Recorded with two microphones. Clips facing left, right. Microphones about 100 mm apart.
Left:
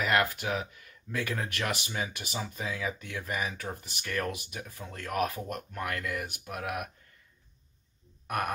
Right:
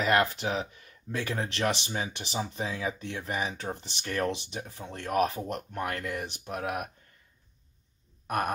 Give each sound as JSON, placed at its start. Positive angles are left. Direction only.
{"t": 0.0, "sound": "speech", "side_deg": -25}